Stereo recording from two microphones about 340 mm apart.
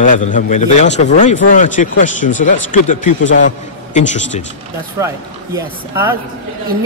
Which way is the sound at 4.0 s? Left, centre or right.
Left.